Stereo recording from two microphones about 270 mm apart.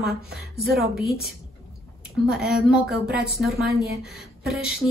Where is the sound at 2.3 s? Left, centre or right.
Centre.